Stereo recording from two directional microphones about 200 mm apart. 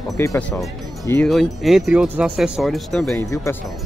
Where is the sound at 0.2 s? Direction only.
10° left (ahead or behind).